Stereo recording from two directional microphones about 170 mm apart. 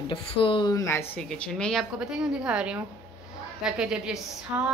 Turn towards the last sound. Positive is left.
turn(degrees=-5)  # may be behind; listen again after turning